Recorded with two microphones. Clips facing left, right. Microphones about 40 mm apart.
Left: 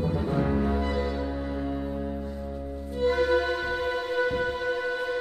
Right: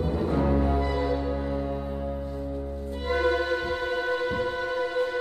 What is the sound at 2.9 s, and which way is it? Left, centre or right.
Music, centre.